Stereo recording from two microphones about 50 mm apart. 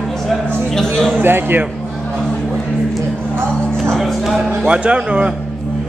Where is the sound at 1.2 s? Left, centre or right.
Right.